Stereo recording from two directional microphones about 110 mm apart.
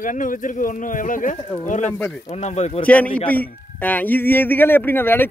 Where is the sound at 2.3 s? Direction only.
90° left.